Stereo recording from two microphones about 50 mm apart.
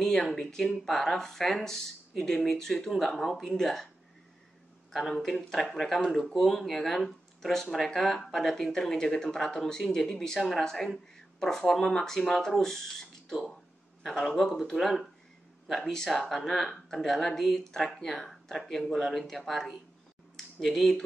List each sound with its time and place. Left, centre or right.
0.0 s speech: centre
5.1 s speech: centre